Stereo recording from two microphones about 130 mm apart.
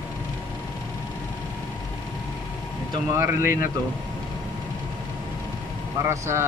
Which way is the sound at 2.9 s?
25° right (ahead or behind).